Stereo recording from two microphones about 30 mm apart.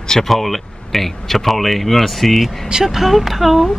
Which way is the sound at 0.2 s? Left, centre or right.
Centre.